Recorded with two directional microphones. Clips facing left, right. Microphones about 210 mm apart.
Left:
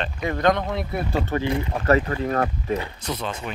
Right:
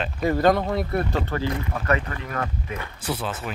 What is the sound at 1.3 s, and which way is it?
Speech, 20° left (ahead or behind).